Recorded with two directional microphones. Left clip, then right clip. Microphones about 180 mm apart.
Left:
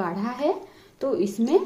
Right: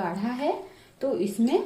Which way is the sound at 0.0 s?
55° left (ahead or behind).